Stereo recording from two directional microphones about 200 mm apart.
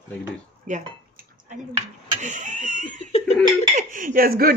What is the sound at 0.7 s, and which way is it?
Speech, 40° right (ahead or behind).